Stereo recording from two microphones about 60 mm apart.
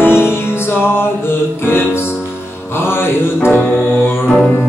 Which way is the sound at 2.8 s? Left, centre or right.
Left.